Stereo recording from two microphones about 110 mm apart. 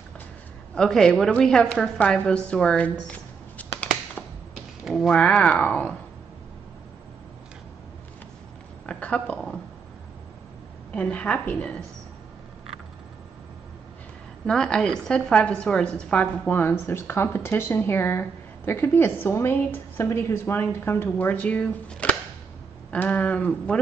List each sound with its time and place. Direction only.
0.7 s a woman's voice: 5° left (ahead or behind)
4.8 s a woman's voice: centre (ahead or behind)
8.8 s a sound: 10° left (ahead or behind)
10.9 s a woman's voice: 10° left (ahead or behind)
14.4 s a woman's voice: 5° left (ahead or behind)